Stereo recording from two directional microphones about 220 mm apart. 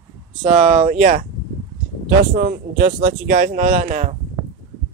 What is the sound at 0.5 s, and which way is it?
Speech, 30° right (ahead or behind).